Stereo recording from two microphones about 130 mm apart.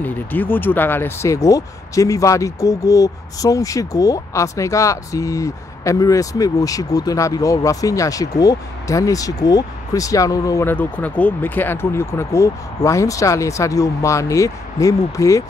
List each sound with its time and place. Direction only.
0.0 s speech: 15° left (ahead or behind)